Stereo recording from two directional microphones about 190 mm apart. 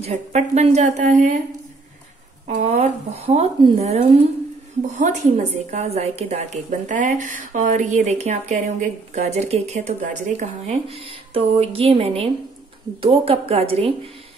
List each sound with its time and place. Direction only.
0.0 s a woman's voice: 35° right (ahead or behind)
2.4 s a woman's voice: 35° right (ahead or behind)